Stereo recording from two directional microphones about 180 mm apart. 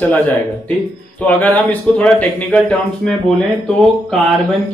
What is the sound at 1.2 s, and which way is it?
Speech, 5° left (ahead or behind).